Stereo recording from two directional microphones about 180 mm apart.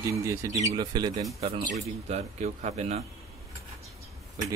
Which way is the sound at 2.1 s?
40° right (ahead or behind).